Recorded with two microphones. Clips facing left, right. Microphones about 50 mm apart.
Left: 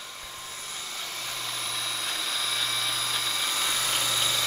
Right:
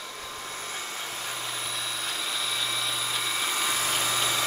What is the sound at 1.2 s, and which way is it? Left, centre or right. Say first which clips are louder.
Vehicle: left 1 dB; centre.